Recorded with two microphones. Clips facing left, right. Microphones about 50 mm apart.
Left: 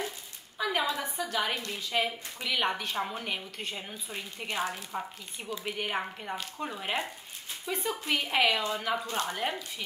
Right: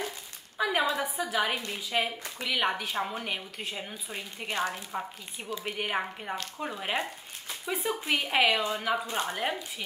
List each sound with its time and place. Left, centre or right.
0.6 s a woman's voice: centre